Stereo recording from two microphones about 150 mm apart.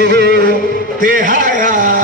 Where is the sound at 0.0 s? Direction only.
90° right.